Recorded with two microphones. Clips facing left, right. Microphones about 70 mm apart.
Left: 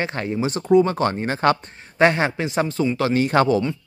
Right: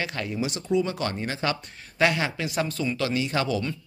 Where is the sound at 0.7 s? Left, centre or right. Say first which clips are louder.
Left 10 dB; left.